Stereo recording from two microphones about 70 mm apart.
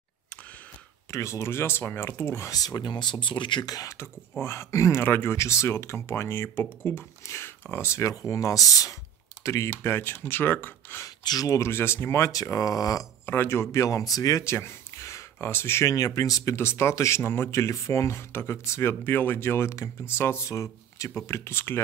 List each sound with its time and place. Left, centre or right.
1.1 s speech: left
2.5 s speech: left
4.4 s speech: left
5.0 s speech: left
5.4 s speech: left
9.7 s speech: left
11.2 s speech: left
11.7 s speech: left
12.2 s speech: left
13.2 s speech: left
14.4 s speech: left
15.9 s speech: left
16.5 s speech: left
21.3 s speech: left